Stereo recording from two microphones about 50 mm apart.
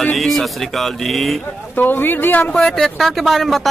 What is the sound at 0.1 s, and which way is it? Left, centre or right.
Speech, centre.